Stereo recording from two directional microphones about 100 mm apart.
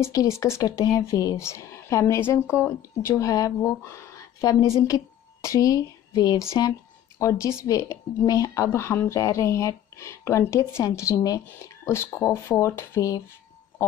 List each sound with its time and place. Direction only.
0.1 s speech: 40° left (ahead or behind)